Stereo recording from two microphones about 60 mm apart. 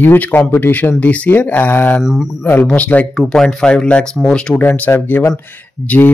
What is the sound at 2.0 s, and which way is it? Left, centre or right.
Speech, centre.